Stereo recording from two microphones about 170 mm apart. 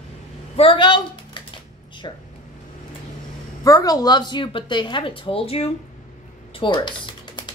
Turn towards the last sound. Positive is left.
turn(degrees=25)  # may be behind; listen again after turning